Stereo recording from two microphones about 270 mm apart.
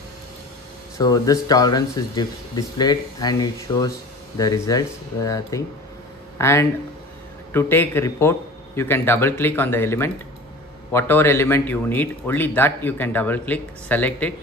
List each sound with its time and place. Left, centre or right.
0.9 s speech: centre